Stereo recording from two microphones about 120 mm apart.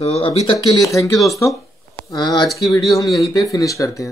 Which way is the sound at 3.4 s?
30° left (ahead or behind).